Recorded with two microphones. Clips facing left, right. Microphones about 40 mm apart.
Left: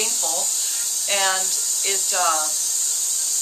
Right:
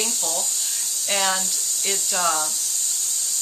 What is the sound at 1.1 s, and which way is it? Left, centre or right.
Speech, centre.